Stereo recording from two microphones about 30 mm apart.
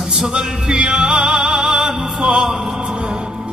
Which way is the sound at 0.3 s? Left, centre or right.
Right.